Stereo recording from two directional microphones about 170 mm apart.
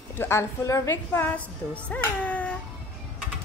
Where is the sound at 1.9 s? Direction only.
10° left (ahead or behind).